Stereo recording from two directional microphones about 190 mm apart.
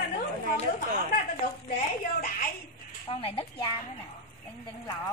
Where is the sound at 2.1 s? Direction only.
50° left (ahead or behind).